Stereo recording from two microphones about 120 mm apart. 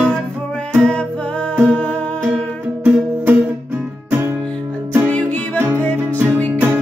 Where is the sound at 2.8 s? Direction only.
15° right (ahead or behind).